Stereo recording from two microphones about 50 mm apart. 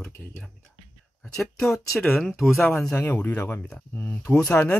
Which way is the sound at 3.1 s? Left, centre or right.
Left.